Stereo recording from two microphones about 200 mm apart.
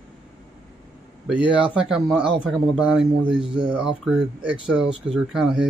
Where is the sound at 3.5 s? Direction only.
25° right (ahead or behind).